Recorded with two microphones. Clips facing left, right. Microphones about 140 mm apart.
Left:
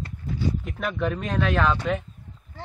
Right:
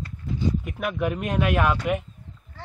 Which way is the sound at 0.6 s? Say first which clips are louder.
Right 1 dB; 10° right (ahead or behind).